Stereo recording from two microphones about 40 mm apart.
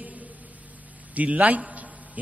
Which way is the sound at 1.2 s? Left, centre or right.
Right.